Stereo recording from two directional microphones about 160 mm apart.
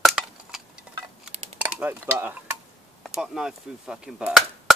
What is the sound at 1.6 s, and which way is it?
Stir, 10° right (ahead or behind).